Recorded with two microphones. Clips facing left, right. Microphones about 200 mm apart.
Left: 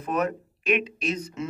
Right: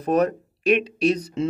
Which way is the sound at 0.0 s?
35° right (ahead or behind).